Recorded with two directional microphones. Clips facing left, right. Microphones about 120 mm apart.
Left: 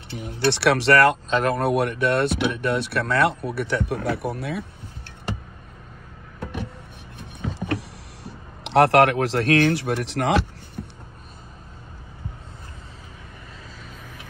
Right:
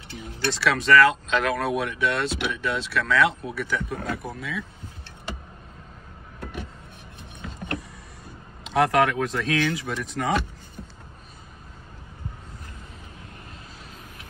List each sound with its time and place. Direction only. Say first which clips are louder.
0.1 s speech: left 5 dB; 55° left (ahead or behind)
0.5 s speech: left 3 dB; 70° left (ahead or behind)
1.3 s speech: left 3 dB; 45° left (ahead or behind)
1.7 s speech: left 4 dB; 55° left (ahead or behind)
7.5 s a sound: left 4 dB; 80° left